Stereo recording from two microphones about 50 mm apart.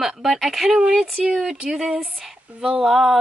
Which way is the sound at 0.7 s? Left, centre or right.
Centre.